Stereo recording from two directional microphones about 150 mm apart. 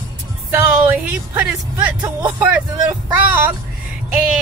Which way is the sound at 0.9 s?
10° right (ahead or behind).